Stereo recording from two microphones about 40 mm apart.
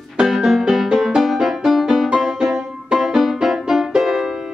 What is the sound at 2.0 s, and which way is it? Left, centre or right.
Music, centre.